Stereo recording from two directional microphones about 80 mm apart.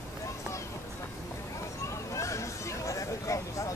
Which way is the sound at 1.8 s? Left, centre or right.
Left.